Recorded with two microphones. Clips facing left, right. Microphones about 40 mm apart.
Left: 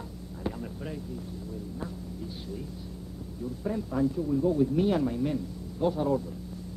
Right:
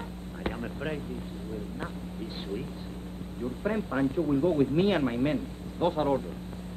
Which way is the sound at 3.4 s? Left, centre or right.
Right.